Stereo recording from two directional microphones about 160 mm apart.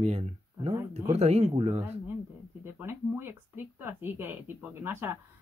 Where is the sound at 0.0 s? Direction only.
40° right (ahead or behind).